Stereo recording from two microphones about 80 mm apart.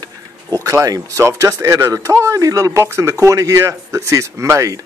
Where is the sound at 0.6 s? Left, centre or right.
Right.